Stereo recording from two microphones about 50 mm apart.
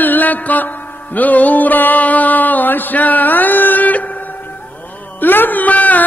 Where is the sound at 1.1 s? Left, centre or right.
Left.